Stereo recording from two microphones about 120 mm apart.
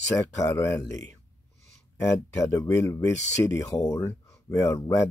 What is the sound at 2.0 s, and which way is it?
Speech, 25° left (ahead or behind).